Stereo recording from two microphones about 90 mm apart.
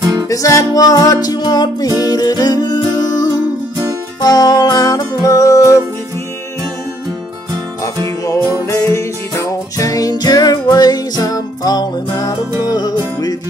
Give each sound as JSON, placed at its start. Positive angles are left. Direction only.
{"t": 0.0, "sound": "music", "side_deg": -40}
{"t": 0.3, "sound": "music", "side_deg": 35}
{"t": 8.6, "sound": "music", "side_deg": 30}